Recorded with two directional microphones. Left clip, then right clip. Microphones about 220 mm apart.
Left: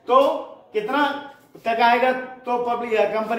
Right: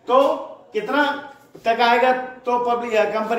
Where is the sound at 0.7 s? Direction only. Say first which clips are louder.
Right 1 dB; 10° right (ahead or behind).